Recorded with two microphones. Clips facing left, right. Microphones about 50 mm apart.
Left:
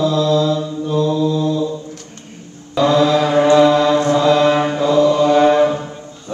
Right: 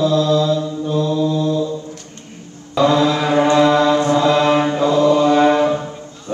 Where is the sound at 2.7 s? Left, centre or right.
Right.